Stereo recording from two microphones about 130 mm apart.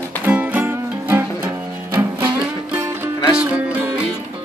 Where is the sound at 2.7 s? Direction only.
20° right (ahead or behind).